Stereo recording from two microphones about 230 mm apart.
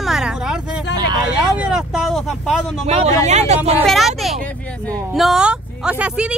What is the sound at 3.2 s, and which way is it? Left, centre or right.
Speech, right.